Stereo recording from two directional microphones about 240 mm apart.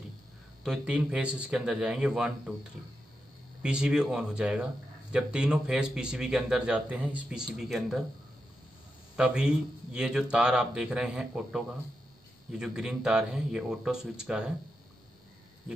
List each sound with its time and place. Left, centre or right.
0.7 s a man's voice: centre
3.6 s a man's voice: centre
9.1 s a man's voice: centre